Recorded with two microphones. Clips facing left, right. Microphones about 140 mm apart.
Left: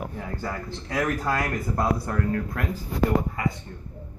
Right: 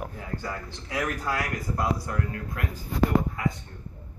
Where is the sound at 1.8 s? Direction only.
50° left (ahead or behind).